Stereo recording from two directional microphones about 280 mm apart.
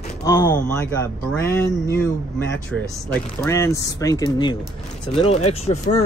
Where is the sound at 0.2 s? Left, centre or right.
Centre.